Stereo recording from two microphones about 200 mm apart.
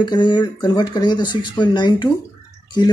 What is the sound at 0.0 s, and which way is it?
Speech, 20° left (ahead or behind).